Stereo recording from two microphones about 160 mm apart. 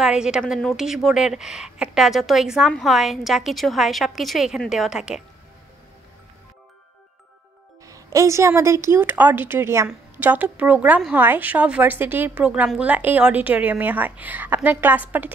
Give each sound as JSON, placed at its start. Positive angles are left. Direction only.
{"t": 0.0, "sound": "a woman's voice", "side_deg": -5}
{"t": 7.8, "sound": "a woman's voice", "side_deg": -20}